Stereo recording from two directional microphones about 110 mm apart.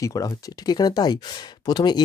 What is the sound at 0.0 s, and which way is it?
Speech, 30° left (ahead or behind).